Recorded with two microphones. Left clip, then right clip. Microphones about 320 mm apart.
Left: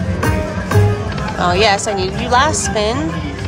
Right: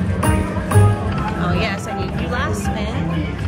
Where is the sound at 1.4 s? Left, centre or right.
Centre.